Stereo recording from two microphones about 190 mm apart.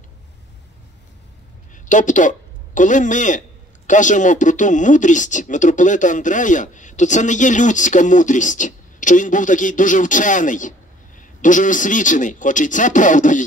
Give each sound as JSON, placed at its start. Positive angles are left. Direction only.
{"t": 1.9, "sound": "a man's voice", "side_deg": 40}